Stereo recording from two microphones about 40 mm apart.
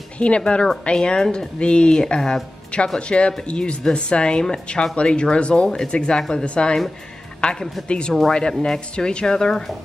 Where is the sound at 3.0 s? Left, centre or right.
Left.